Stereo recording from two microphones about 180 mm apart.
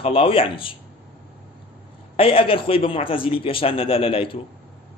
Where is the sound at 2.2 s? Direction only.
30° left (ahead or behind).